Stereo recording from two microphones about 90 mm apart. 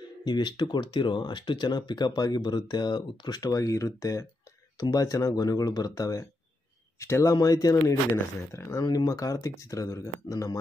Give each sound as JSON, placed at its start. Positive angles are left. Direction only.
{"t": 0.2, "sound": "speech", "side_deg": 55}
{"t": 7.3, "sound": "speech", "side_deg": 45}
{"t": 8.8, "sound": "speech", "side_deg": 45}